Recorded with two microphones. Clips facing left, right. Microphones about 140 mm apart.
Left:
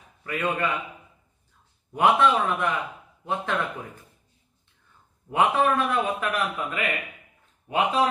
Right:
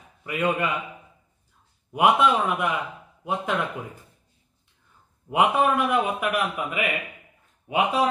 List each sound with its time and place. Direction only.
0.3 s a man's voice: 10° right (ahead or behind)
1.9 s a man's voice: 10° right (ahead or behind)
5.3 s a man's voice: 15° right (ahead or behind)